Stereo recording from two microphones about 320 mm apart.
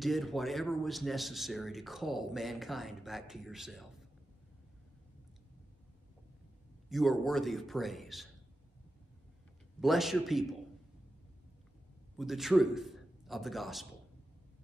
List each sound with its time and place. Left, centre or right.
0.0 s speech: centre
6.9 s speech: centre
9.8 s speech: centre
12.2 s a man's voice: centre